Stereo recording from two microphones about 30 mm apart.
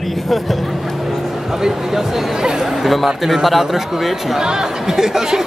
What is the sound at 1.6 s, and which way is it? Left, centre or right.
Speech, centre.